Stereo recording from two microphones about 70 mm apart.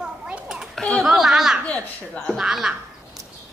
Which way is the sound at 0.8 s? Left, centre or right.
Centre.